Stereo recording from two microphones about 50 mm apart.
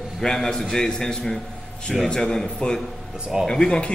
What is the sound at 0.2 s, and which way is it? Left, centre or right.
A man's voice, centre.